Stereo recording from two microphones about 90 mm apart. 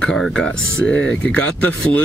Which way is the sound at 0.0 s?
10° left (ahead or behind).